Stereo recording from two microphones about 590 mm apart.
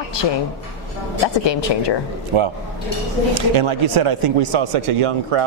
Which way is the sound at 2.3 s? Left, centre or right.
Right.